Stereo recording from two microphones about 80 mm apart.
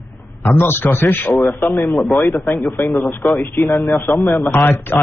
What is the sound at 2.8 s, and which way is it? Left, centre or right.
Speech, left.